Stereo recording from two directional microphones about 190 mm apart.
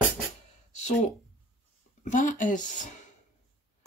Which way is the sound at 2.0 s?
40° left (ahead or behind).